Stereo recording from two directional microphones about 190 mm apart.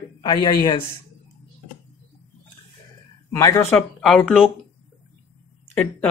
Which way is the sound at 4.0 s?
Centre (ahead or behind).